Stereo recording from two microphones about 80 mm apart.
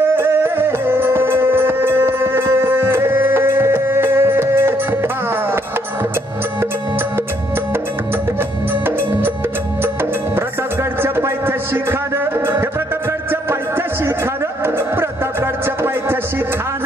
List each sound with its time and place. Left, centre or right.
0.0 s music: right
10.3 s music: right